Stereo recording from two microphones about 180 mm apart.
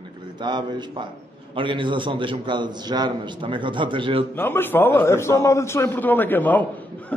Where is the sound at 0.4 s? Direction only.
25° right (ahead or behind).